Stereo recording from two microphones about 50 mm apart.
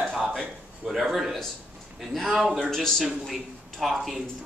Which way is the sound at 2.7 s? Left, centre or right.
Centre.